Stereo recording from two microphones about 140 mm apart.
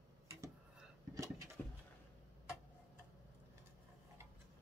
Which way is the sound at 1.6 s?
10° left (ahead or behind).